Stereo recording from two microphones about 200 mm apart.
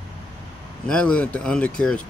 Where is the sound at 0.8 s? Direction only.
5° left (ahead or behind).